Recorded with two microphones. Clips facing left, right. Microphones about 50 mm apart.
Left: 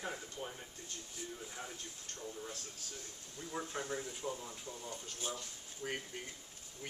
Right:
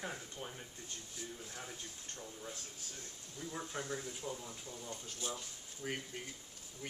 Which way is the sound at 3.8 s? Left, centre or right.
Centre.